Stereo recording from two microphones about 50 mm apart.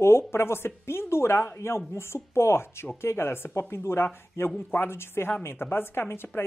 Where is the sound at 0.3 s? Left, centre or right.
Left.